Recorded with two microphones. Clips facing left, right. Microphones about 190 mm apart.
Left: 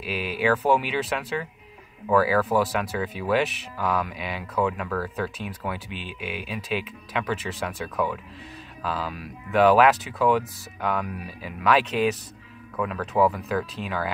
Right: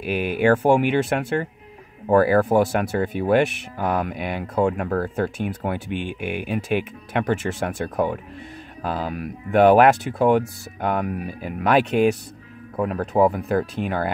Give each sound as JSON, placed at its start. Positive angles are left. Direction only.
{"t": 0.0, "sound": "speech", "side_deg": -55}